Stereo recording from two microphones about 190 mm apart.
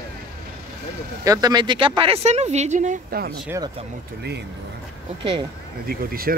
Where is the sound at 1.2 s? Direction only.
20° right (ahead or behind); by 3.4 s 55° right (ahead or behind).